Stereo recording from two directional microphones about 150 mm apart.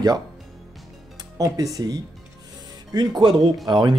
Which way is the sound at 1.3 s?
25° right (ahead or behind).